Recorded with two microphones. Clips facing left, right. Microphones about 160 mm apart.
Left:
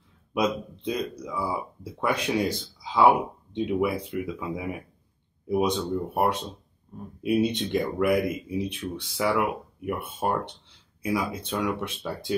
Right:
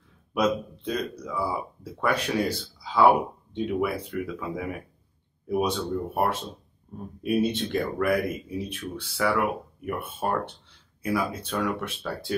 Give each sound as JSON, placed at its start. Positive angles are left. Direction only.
{"t": 0.3, "sound": "speech", "side_deg": 15}